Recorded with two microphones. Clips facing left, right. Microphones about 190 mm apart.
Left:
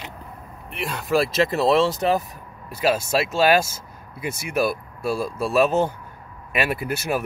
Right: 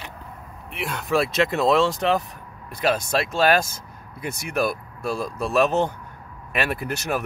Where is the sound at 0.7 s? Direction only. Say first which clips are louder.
Left 1 dB; centre (ahead or behind).